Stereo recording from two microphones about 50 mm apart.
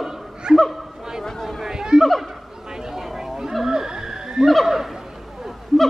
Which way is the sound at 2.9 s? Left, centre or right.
Centre.